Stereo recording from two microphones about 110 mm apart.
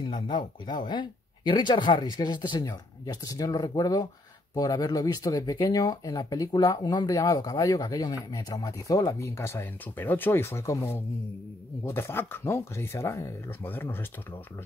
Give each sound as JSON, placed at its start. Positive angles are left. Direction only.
{"t": 0.0, "sound": "speech", "side_deg": 40}